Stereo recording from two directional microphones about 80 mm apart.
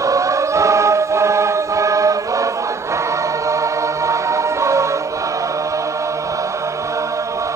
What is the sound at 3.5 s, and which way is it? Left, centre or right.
Music, right.